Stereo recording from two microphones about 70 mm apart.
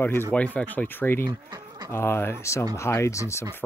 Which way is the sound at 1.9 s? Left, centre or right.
Left.